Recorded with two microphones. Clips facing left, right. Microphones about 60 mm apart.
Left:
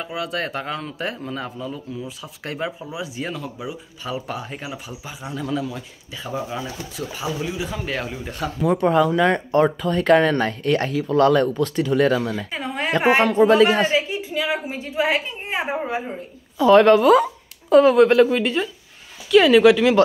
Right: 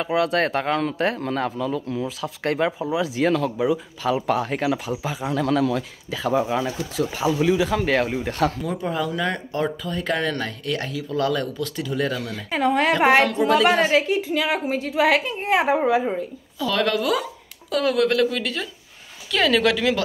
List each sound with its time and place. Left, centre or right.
0.1 s speech: right
2.4 s speech: right
3.0 s a woman's voice: right
6.4 s speech: right
7.5 s speech: right
8.6 s speech: left
11.9 s speech: left
12.4 s speech: right
13.2 s speech: left
13.9 s a woman's voice: right
16.5 s speech: left
19.3 s speech: centre